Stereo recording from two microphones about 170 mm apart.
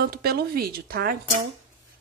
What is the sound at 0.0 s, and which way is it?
Speech, 65° right (ahead or behind).